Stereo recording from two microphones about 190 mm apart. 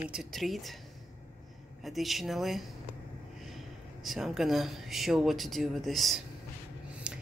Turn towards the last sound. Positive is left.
turn(degrees=-5)  # may be behind; listen again after turning